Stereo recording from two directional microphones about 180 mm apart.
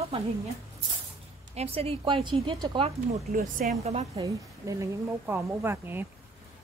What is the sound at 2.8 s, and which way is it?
Speech, 40° right (ahead or behind).